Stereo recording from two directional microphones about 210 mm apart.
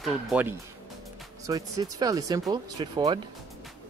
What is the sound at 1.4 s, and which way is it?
Speech, 20° right (ahead or behind).